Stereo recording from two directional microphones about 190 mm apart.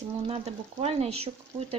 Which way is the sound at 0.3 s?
35° right (ahead or behind).